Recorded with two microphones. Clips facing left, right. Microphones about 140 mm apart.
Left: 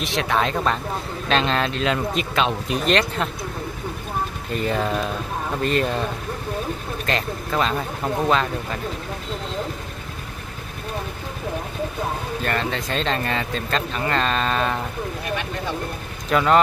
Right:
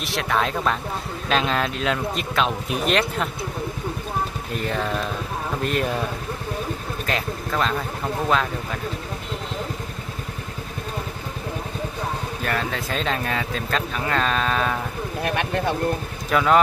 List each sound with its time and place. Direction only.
0.0 s speech: centre (ahead or behind)
4.5 s speech: centre (ahead or behind)
7.1 s speech: centre (ahead or behind)
12.4 s speech: 5° right (ahead or behind)
15.2 s speech: 55° right (ahead or behind)
16.3 s speech: centre (ahead or behind)